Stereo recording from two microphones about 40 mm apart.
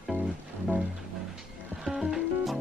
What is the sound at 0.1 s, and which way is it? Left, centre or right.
Music, left.